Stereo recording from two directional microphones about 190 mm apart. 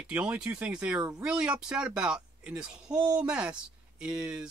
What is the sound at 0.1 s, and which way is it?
Speech, 5° right (ahead or behind).